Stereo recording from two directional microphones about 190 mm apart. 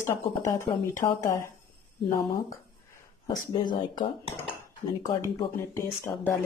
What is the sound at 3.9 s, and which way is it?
Cutlery, 25° left (ahead or behind).